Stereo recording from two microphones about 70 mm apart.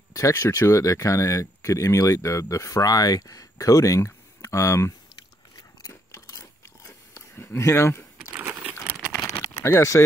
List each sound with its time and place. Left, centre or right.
0.1 s speech: left
5.9 s biting: left
7.3 s speech: left
8.5 s crumpling: right
9.7 s speech: left